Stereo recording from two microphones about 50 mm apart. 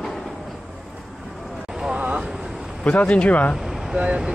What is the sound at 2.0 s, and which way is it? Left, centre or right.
Vehicle, right.